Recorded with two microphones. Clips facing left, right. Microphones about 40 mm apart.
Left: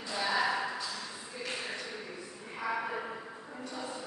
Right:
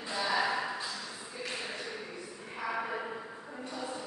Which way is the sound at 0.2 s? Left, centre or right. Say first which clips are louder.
Even; centre.